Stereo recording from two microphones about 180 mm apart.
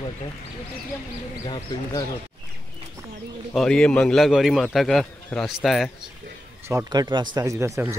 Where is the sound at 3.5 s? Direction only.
Centre (ahead or behind).